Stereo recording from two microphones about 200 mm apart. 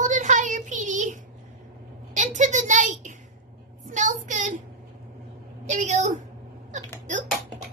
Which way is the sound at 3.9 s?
40° right (ahead or behind).